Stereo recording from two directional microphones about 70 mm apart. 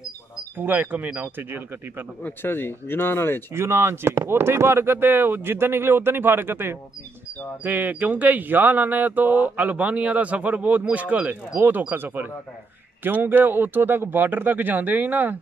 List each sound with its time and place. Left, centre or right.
0.6 s speech: right
2.2 s speech: left
3.5 s speech: right